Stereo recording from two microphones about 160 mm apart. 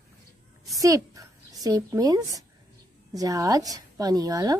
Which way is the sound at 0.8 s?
20° right (ahead or behind).